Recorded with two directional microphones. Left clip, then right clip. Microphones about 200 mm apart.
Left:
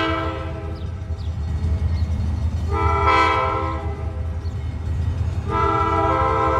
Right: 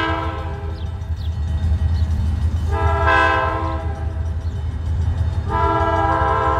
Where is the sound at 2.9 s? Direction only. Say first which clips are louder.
Right 2 dB; 10° left (ahead or behind).